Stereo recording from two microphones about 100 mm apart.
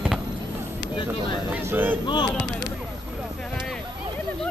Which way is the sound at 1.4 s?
20° right (ahead or behind).